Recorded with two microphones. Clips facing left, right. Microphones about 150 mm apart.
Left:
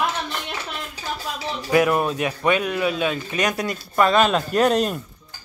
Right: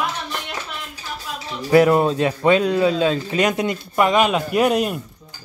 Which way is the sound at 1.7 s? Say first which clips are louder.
Right 5 dB; 30° right (ahead or behind).